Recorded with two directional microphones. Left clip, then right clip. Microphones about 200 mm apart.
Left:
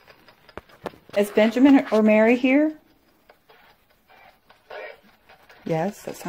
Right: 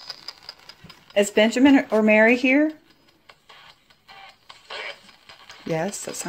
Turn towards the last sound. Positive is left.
turn(degrees=5)  # may be behind; listen again after turning